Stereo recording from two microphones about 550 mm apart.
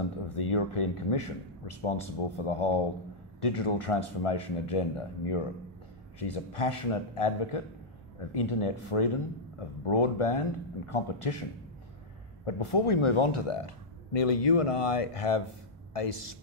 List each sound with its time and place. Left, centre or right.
0.3 s speech: left
12.4 s speech: left